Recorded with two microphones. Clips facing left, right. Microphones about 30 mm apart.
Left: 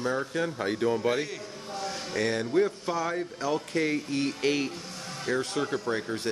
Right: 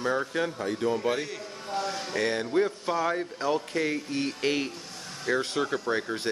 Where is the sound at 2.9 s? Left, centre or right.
Centre.